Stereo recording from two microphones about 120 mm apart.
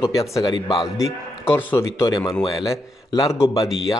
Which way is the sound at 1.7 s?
25° left (ahead or behind).